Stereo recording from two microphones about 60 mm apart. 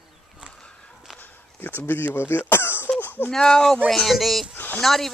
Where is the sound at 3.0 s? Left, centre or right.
Left.